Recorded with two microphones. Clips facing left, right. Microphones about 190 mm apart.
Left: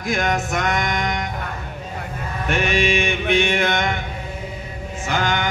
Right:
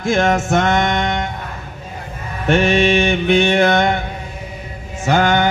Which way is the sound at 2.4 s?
30° right (ahead or behind).